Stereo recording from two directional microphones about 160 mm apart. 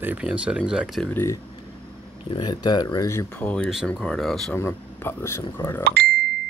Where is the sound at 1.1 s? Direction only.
15° left (ahead or behind); by 4.5 s centre (ahead or behind).